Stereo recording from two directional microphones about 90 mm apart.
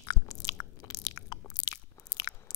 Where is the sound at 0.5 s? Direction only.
45° left (ahead or behind).